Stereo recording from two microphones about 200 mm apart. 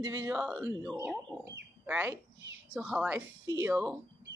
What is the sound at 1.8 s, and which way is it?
A woman's voice, 10° right (ahead or behind).